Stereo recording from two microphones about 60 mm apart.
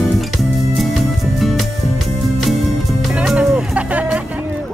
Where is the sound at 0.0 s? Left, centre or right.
Centre; by 4.5 s right.